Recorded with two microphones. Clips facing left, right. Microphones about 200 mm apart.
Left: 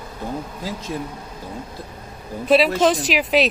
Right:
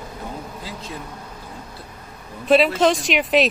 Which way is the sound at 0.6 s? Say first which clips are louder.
Left 5 dB; 40° left (ahead or behind).